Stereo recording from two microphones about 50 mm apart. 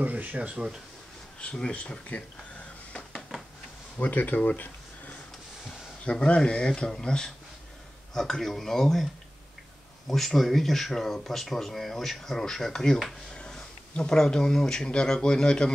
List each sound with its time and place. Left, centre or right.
0.0 s speech: right
0.4 s speech: centre
1.4 s speech: centre
4.0 s speech: left
4.5 s a sound: left
6.0 s speech: left